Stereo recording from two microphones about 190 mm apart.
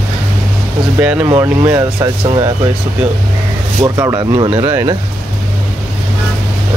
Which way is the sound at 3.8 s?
15° right (ahead or behind).